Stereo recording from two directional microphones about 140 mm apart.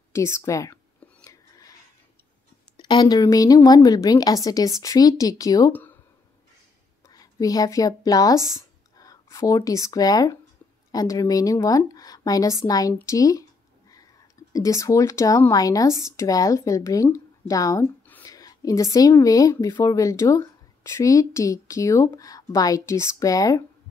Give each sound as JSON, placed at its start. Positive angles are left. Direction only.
{"t": 0.1, "sound": "a woman's voice", "side_deg": 20}
{"t": 1.2, "sound": "whispering", "side_deg": 25}
{"t": 2.8, "sound": "a woman's voice", "side_deg": 30}
{"t": 5.7, "sound": "speech", "side_deg": 15}
{"t": 7.1, "sound": "a woman's voice", "side_deg": 25}